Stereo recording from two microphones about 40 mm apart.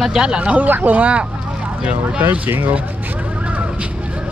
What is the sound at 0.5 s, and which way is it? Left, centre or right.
Speech, right.